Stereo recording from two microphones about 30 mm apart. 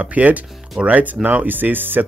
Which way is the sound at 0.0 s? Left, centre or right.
Right.